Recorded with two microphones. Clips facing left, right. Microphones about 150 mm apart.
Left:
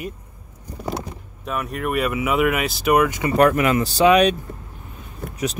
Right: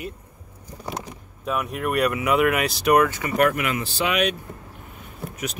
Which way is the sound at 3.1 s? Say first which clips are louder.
Left 4 dB; 30° left (ahead or behind).